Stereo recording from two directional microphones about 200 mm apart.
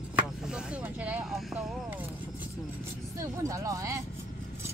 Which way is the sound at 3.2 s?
15° right (ahead or behind).